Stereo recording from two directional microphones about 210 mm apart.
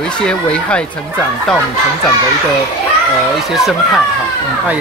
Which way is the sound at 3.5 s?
Centre (ahead or behind).